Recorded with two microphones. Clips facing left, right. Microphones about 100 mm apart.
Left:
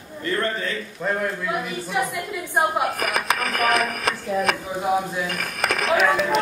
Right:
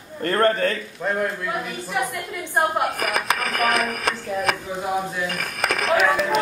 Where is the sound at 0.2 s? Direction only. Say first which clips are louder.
Right 6 dB; 55° right (ahead or behind).